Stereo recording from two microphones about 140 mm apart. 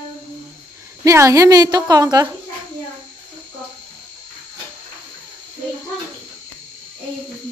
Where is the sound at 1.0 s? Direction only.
20° right (ahead or behind).